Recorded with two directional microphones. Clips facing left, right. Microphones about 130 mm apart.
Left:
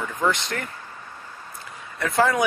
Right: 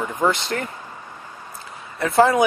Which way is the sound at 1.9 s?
30° right (ahead or behind).